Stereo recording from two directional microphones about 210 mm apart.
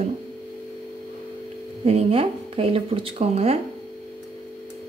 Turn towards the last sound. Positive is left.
turn(degrees=-30)  # may be behind; listen again after turning